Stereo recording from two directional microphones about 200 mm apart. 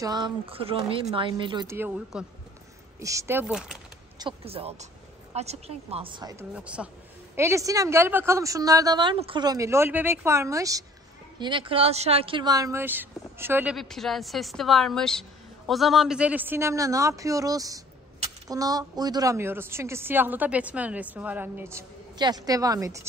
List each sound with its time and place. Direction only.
0.0 s speech: 20° right (ahead or behind)
1.8 s a woman's voice: 5° right (ahead or behind)
4.2 s speech: 25° right (ahead or behind)
6.5 s a woman's voice: 5° right (ahead or behind)
13.7 s a woman's voice: centre (ahead or behind); by 23.0 s 15° right (ahead or behind)